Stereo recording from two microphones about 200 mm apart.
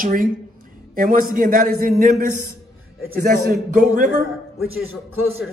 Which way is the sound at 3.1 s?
50° right (ahead or behind).